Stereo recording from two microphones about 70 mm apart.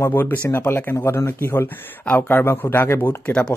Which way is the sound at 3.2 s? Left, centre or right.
Centre.